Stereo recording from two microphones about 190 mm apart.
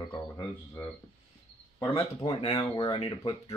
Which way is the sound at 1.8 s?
25° left (ahead or behind).